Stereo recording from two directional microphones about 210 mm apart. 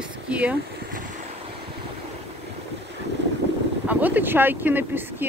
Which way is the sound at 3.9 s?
10° right (ahead or behind).